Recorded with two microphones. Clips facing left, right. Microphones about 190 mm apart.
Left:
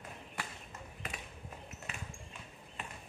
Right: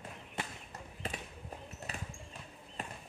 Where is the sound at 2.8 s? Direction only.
40° right (ahead or behind).